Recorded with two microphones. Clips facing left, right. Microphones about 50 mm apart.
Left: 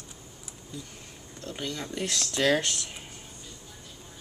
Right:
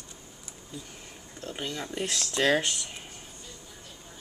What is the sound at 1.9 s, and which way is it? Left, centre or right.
Speech, centre.